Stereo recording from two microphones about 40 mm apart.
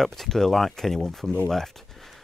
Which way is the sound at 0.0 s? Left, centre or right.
Centre.